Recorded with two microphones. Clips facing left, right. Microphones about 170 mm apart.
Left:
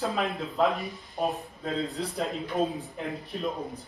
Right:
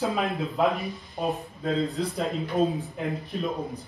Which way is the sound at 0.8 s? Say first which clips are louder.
Even; centre (ahead or behind).